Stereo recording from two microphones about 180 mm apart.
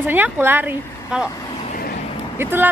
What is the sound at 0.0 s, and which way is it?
Speech, 10° right (ahead or behind).